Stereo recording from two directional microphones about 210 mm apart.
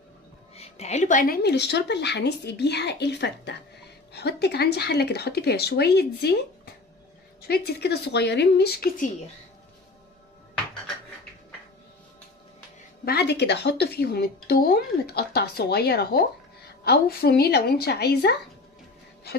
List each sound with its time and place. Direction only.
0.6 s a woman's voice: 30° left (ahead or behind)
13.0 s a woman's voice: 50° left (ahead or behind)